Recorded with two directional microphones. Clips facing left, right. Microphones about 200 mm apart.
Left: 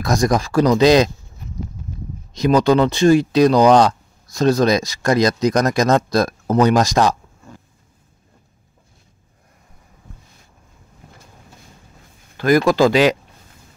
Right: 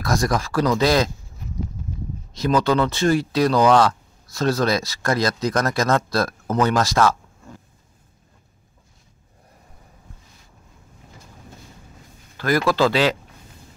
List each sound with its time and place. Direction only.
0.0 s speech: 20° left (ahead or behind)
2.3 s speech: 15° left (ahead or behind)
12.4 s speech: 15° left (ahead or behind)